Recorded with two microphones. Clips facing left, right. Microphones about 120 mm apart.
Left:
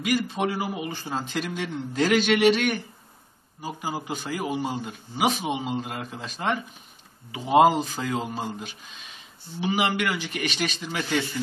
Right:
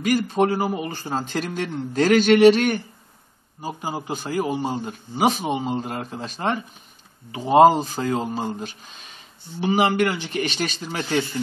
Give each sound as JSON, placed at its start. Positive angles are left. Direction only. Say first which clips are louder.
{"t": 0.0, "sound": "a man's voice", "louder": "right 5 dB", "side_deg": -45}